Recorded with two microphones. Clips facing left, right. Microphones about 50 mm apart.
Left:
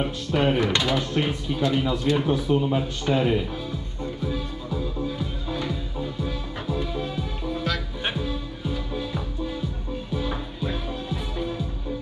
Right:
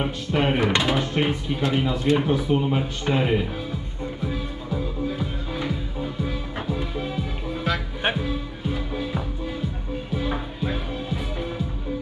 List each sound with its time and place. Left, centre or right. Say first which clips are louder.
0.0 s speech: even; right
4.2 s music: even; centre